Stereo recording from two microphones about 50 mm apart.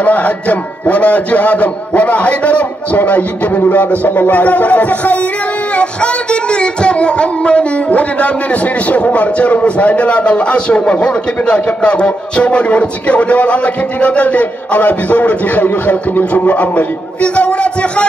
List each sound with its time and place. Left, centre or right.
0.0 s music: left
4.0 s speech: left
5.8 s music: left